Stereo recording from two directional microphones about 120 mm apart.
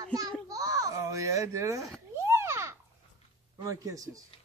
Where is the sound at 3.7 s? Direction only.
30° right (ahead or behind).